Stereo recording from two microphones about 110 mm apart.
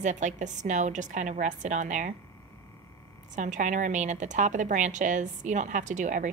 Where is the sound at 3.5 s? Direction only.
90° right.